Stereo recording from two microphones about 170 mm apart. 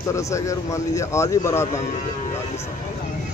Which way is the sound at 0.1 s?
20° left (ahead or behind).